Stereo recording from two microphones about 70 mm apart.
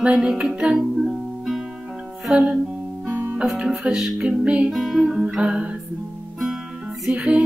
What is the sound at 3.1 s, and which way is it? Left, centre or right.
Music, right.